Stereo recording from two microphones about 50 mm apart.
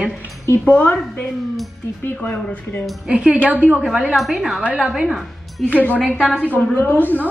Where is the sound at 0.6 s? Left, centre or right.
Left.